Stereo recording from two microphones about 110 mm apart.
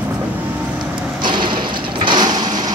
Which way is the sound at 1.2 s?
45° right (ahead or behind).